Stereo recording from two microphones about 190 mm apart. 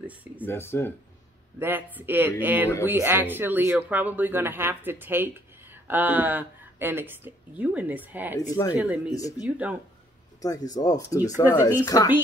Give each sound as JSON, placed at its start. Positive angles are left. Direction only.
{"t": 0.4, "sound": "speech", "side_deg": 10}
{"t": 1.6, "sound": "speech", "side_deg": -10}
{"t": 8.4, "sound": "speech", "side_deg": 20}
{"t": 8.7, "sound": "speech", "side_deg": -5}
{"t": 10.4, "sound": "speech", "side_deg": 20}